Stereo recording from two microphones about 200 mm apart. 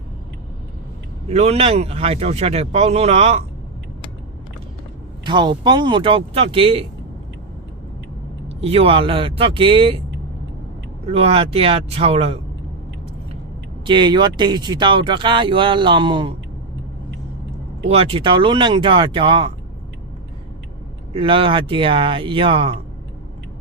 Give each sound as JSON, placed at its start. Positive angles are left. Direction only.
{"t": 1.3, "sound": "speech", "side_deg": -35}
{"t": 5.2, "sound": "speech", "side_deg": -20}
{"t": 8.5, "sound": "speech", "side_deg": -30}
{"t": 11.1, "sound": "speech", "side_deg": -30}
{"t": 13.8, "sound": "speech", "side_deg": -20}
{"t": 17.8, "sound": "speech", "side_deg": -30}
{"t": 21.1, "sound": "speech", "side_deg": -25}